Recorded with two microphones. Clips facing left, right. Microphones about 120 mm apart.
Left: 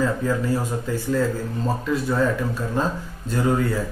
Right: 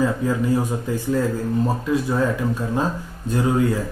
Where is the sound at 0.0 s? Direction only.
15° right (ahead or behind).